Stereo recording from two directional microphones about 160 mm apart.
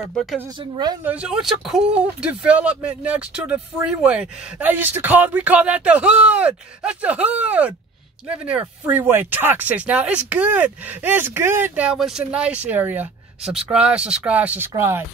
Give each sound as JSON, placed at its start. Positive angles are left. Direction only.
{"t": 0.1, "sound": "speech", "side_deg": 0}
{"t": 0.6, "sound": "speech", "side_deg": -25}
{"t": 1.0, "sound": "speech", "side_deg": -5}